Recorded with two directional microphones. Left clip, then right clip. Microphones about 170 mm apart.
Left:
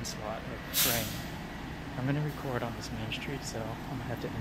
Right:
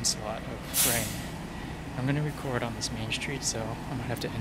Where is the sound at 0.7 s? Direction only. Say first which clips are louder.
Right 1 dB; centre (ahead or behind).